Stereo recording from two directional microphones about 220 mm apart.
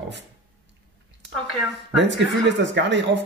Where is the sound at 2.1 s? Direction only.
55° right (ahead or behind).